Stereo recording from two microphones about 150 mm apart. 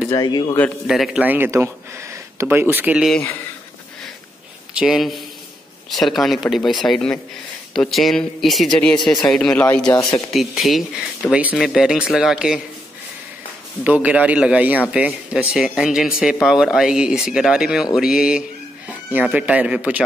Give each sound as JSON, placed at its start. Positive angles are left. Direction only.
{"t": 0.1, "sound": "a man's voice", "side_deg": 25}
{"t": 0.8, "sound": "speech", "side_deg": 0}
{"t": 1.2, "sound": "speech", "side_deg": -15}
{"t": 3.1, "sound": "speech", "side_deg": 10}
{"t": 4.7, "sound": "speech", "side_deg": -5}
{"t": 9.8, "sound": "a man's voice", "side_deg": 20}
{"t": 10.3, "sound": "speech", "side_deg": 0}
{"t": 13.8, "sound": "speech", "side_deg": -10}